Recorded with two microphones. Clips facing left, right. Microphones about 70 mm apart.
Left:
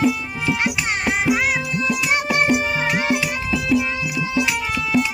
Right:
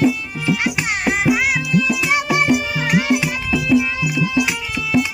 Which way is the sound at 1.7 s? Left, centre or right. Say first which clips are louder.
Right 4 dB; left.